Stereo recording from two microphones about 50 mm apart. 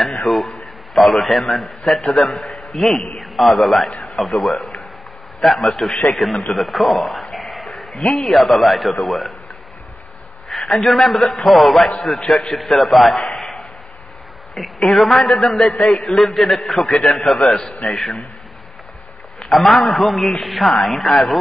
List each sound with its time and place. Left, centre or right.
0.3 s a man's voice: centre
2.4 s a sound: left
2.7 s a man's voice: centre
10.7 s a man's voice: centre
13.4 s chop: centre
14.5 s a man's voice: centre
19.5 s a man's voice: centre